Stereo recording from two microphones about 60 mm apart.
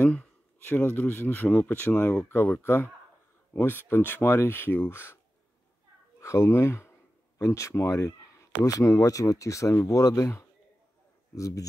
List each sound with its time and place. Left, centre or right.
0.0 s a sound: left
0.7 s speech: left
6.2 s speech: left
8.5 s speech: left
11.3 s speech: left